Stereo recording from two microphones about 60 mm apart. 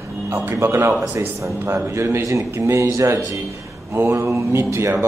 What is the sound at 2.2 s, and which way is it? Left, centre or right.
A man's voice, right.